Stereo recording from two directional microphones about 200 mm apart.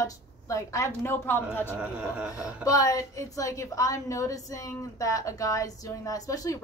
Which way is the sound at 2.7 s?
15° left (ahead or behind).